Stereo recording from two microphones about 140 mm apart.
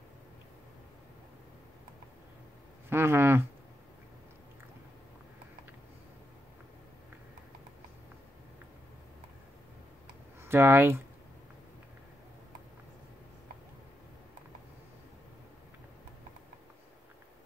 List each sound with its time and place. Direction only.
2.9 s speech: 15° right (ahead or behind)
10.4 s speech: 15° right (ahead or behind)